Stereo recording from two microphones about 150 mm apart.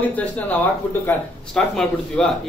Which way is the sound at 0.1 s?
10° left (ahead or behind).